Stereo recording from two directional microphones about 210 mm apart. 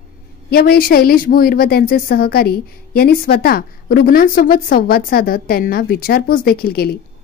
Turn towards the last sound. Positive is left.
turn(degrees=50)  # may be behind; listen again after turning